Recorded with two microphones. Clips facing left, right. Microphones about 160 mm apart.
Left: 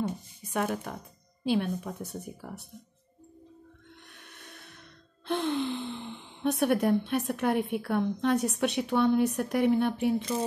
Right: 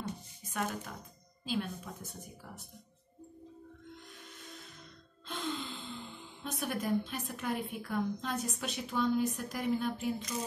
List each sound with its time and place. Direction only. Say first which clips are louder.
0.5 s a woman's voice: left 7 dB; 60° left (ahead or behind)
4.3 s music: left 1 dB; 65° left (ahead or behind)
5.2 s speech: left 10 dB; 65° left (ahead or behind)